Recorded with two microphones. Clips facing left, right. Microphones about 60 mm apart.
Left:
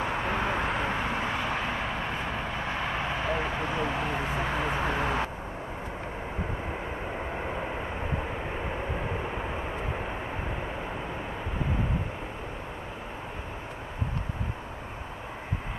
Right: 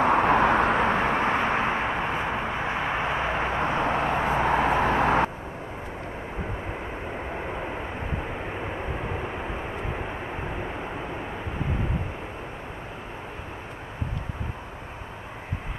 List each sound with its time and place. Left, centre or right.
0.0 s vehicle: right
7.2 s vehicle: centre